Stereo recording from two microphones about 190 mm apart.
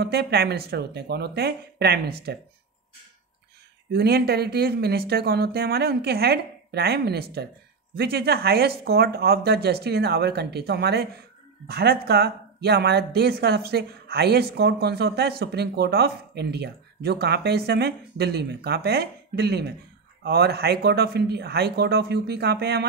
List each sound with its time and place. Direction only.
0.0 s speech: 60° right (ahead or behind)
3.9 s speech: 55° right (ahead or behind)